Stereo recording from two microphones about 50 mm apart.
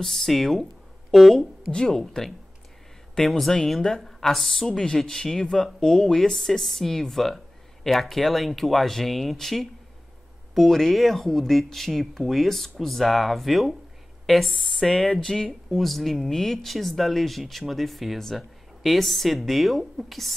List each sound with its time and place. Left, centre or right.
0.0 s a woman's voice: centre
1.7 s speech: centre
2.0 s a woman's voice: centre